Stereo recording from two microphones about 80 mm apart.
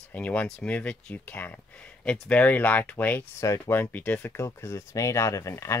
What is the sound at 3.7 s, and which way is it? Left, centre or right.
Speech, left.